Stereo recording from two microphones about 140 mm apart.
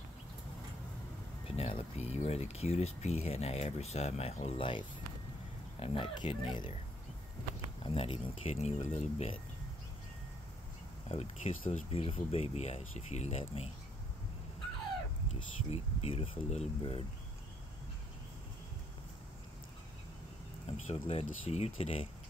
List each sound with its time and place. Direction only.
1.6 s speech: 45° left (ahead or behind)
7.8 s speech: 40° left (ahead or behind)
11.1 s speech: 50° left (ahead or behind)
15.3 s speech: 45° left (ahead or behind)
20.6 s speech: 50° left (ahead or behind)